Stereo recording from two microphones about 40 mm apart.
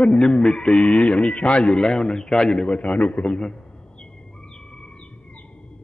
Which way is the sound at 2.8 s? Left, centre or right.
Left.